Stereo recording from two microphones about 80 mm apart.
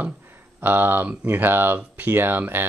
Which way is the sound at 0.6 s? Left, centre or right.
Right.